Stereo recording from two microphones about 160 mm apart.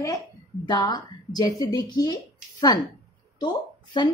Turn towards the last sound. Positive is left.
turn(degrees=30)  # may be behind; listen again after turning